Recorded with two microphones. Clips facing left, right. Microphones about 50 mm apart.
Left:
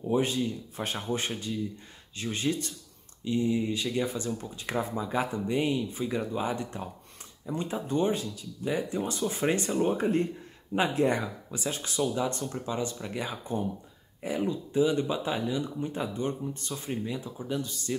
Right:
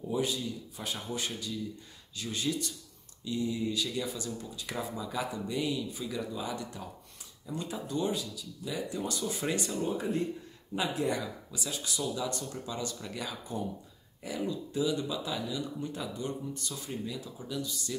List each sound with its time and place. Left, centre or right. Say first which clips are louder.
0.0 s speech: left 5 dB; left
9.7 s speech: left 6 dB; left